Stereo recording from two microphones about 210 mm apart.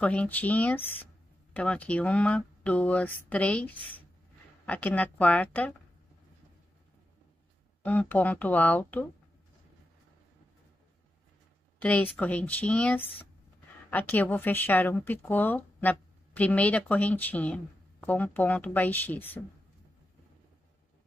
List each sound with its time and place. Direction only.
0.0 s speech: 5° left (ahead or behind)
7.8 s speech: 10° left (ahead or behind)
11.8 s speech: 5° left (ahead or behind)